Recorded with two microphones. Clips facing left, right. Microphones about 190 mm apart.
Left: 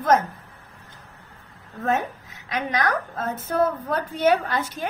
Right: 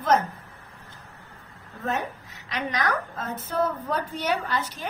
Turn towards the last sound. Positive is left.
turn(degrees=55)  # may be behind; listen again after turning